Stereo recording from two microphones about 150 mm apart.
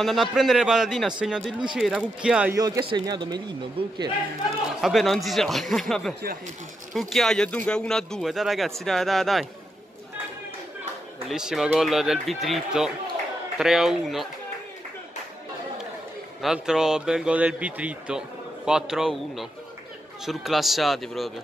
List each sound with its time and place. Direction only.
0.0 s speech: centre (ahead or behind)
2.5 s speech: 25° right (ahead or behind)
2.8 s speech: 35° right (ahead or behind)
4.8 s speech: centre (ahead or behind)
11.2 s speech: 5° right (ahead or behind)
16.3 s speech: 5° right (ahead or behind)